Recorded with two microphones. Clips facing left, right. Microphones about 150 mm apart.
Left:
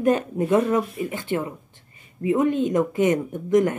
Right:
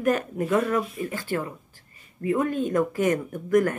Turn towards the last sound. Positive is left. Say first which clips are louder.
# left 2 dB
turn(degrees=20)  # may be behind; listen again after turning